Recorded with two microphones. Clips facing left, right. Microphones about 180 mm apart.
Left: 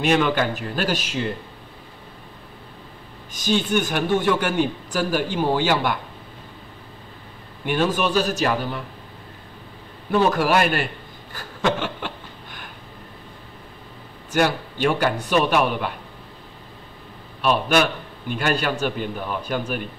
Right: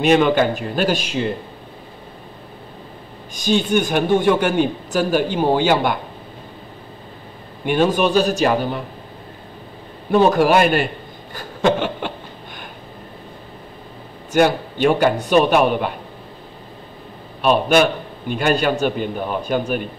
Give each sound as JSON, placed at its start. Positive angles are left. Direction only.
{"t": 0.0, "sound": "a man's voice", "side_deg": -20}
{"t": 3.5, "sound": "a man's voice", "side_deg": -25}
{"t": 7.6, "sound": "a man's voice", "side_deg": -20}
{"t": 10.1, "sound": "a man's voice", "side_deg": -25}
{"t": 11.3, "sound": "a sound", "side_deg": -20}
{"t": 14.3, "sound": "a man's voice", "side_deg": -20}
{"t": 17.4, "sound": "a man's voice", "side_deg": -20}